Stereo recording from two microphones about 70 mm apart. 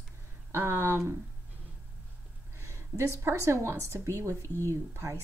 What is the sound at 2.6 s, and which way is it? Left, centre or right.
A woman's voice, right.